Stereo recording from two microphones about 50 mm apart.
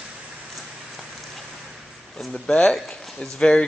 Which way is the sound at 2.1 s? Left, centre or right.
Centre.